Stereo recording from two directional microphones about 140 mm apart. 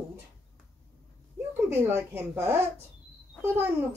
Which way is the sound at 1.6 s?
15° right (ahead or behind).